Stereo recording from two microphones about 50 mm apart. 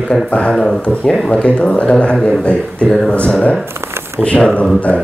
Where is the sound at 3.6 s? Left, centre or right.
Right.